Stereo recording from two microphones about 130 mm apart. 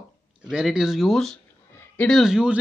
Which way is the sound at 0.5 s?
5° right (ahead or behind).